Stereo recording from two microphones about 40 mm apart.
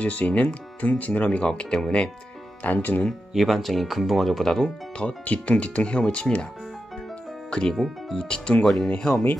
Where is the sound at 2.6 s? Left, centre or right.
Left.